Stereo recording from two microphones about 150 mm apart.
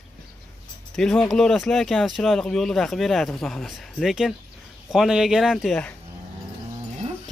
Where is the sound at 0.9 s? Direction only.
5° left (ahead or behind).